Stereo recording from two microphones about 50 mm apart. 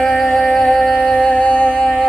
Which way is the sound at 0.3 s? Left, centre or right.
Left.